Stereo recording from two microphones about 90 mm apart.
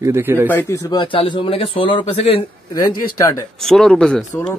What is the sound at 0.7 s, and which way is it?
Speech, 40° left (ahead or behind).